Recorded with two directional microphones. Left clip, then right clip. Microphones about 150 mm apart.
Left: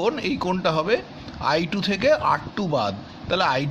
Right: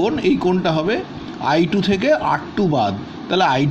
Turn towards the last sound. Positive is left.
turn(degrees=20)  # may be behind; listen again after turning